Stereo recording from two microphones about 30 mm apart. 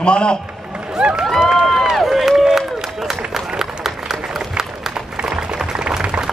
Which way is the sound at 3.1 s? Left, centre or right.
Centre.